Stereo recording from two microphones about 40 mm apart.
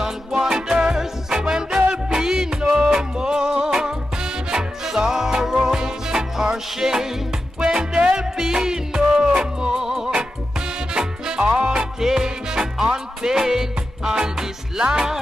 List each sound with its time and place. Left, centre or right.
0.0 s music: centre